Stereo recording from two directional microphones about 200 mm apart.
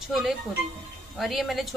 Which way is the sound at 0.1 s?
Centre (ahead or behind).